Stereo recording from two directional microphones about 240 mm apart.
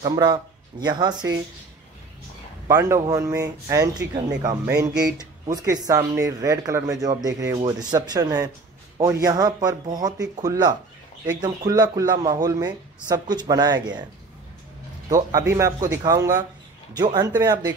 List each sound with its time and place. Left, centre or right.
0.0 s speech: centre
2.7 s a man's voice: centre
15.0 s a man's voice: centre